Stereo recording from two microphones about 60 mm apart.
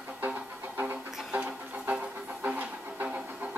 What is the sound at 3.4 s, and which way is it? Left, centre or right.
Music, right.